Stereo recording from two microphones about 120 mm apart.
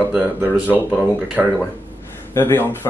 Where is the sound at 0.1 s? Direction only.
15° right (ahead or behind).